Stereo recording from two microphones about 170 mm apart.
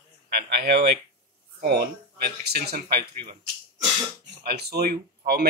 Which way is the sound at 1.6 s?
65° right (ahead or behind).